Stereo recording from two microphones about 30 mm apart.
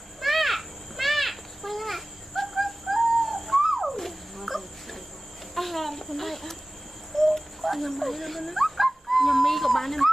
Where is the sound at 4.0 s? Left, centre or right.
Centre.